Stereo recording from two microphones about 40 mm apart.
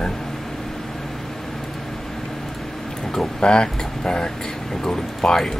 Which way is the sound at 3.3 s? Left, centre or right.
Left.